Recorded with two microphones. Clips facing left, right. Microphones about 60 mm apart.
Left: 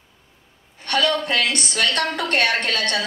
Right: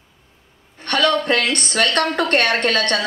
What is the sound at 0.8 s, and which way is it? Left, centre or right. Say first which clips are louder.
A woman's voice: right 3 dB; right.